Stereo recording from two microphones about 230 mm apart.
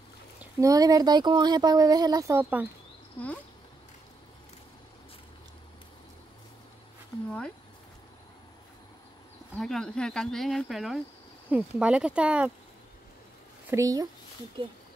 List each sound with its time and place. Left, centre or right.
0.4 s speech: centre
7.2 s speech: centre
9.6 s speech: centre
13.7 s speech: centre